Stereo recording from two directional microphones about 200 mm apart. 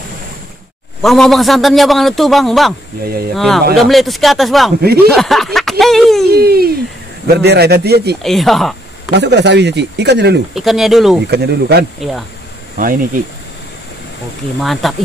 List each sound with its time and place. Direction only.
1.0 s a man's voice: centre (ahead or behind)
6.3 s a man's voice: 50° right (ahead or behind)
8.2 s speech: centre (ahead or behind)
9.1 s speech: 60° right (ahead or behind)
10.5 s a man's voice: centre (ahead or behind)
11.2 s speech: 55° right (ahead or behind)
12.7 s a man's voice: 45° right (ahead or behind)
14.6 s a man's voice: centre (ahead or behind)